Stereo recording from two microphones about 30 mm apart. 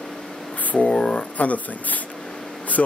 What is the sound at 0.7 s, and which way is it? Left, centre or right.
A man's voice, left.